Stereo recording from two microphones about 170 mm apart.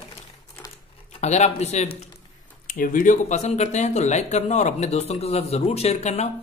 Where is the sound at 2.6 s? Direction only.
55° left (ahead or behind).